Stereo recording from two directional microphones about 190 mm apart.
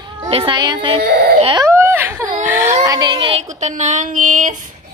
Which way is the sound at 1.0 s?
60° right (ahead or behind).